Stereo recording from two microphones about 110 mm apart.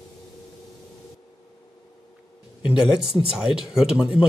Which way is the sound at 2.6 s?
5° right (ahead or behind).